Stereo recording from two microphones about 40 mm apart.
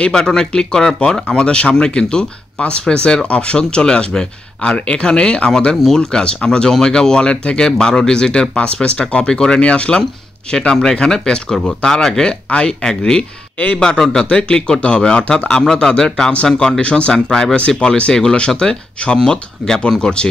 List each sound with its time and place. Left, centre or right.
0.0 s a man's voice: centre
9.6 s a man's voice: left
10.7 s speech: centre
14.3 s a man's voice: left
17.6 s a man's voice: left